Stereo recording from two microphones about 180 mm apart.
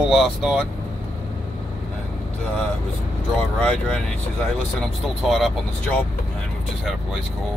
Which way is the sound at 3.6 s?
5° left (ahead or behind).